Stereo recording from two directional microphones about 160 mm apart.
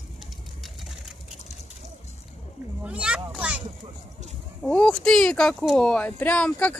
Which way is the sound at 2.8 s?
5° right (ahead or behind).